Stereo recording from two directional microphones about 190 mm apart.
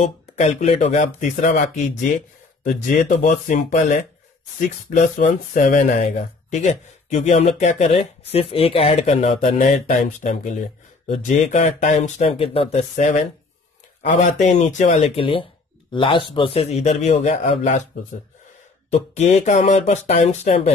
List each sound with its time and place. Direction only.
0.0 s speech: 40° left (ahead or behind)
2.6 s speech: 40° left (ahead or behind)
18.9 s speech: 35° left (ahead or behind)